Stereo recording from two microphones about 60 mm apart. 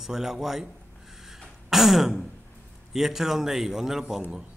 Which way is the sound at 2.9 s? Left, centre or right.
Centre.